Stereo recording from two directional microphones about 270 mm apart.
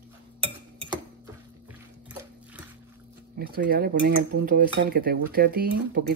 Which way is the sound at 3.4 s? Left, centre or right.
Right.